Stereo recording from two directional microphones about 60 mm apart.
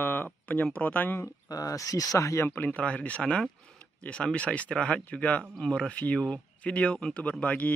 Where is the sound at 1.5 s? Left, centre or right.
Left.